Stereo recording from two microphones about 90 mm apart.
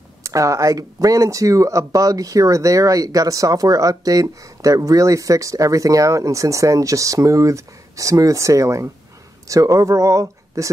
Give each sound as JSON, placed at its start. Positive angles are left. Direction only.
{"t": 0.2, "sound": "speech", "side_deg": -35}